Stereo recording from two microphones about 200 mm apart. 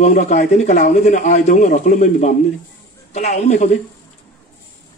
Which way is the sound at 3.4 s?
40° left (ahead or behind).